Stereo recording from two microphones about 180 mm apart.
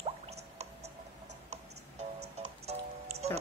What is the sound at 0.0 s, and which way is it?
Squish, 35° right (ahead or behind).